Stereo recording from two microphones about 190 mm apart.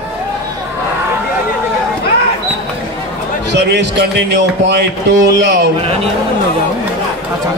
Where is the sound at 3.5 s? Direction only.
65° right (ahead or behind).